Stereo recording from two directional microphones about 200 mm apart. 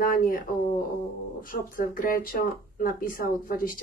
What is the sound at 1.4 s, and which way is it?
Speech, 45° left (ahead or behind).